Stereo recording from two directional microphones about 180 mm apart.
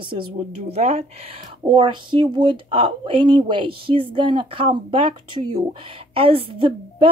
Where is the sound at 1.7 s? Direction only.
25° right (ahead or behind).